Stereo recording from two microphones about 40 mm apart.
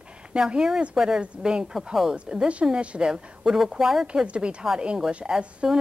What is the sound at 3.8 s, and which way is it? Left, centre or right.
Speech, centre.